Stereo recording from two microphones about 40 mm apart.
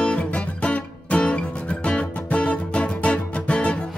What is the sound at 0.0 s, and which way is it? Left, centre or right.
Music, left.